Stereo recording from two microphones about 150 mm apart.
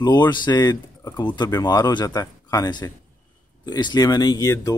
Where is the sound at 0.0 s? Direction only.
30° left (ahead or behind).